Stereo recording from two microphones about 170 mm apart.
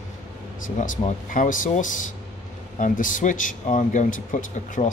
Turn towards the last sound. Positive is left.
turn(degrees=50)  # may be behind; listen again after turning